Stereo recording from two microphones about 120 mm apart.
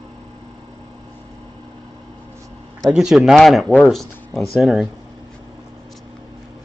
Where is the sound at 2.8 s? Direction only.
5° right (ahead or behind).